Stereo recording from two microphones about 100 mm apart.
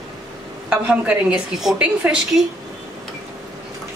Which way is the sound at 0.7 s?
10° right (ahead or behind).